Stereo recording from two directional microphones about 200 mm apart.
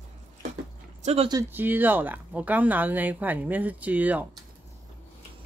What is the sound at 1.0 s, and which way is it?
Speech, 35° right (ahead or behind).